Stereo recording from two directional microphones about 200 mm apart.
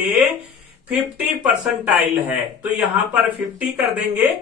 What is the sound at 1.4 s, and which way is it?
Speech, 5° right (ahead or behind).